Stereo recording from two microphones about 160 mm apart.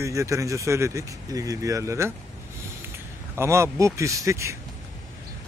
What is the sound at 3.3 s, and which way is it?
Speech, 15° right (ahead or behind).